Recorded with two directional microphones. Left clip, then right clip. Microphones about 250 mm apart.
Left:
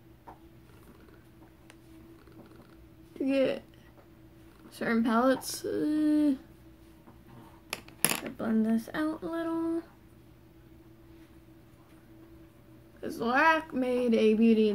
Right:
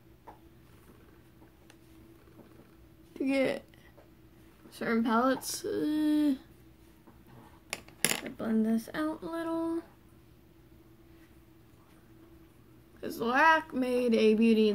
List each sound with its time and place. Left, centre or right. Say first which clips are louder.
3.2 s speech: left 2 dB; centre
4.6 s speech: left 1 dB; centre
8.1 s speech: left 3 dB; centre
13.0 s speech: even; centre